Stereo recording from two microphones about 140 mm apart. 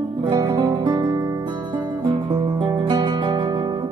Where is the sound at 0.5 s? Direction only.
25° right (ahead or behind).